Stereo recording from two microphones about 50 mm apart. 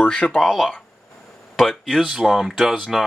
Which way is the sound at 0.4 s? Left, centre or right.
Centre.